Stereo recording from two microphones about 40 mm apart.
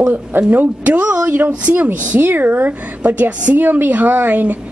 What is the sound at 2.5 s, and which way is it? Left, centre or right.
A woman's voice, right.